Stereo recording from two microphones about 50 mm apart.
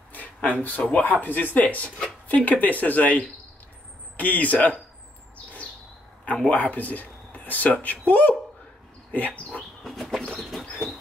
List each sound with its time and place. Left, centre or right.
0.4 s speech: left
6.5 s speech: left
9.1 s dog: left
9.8 s bird: centre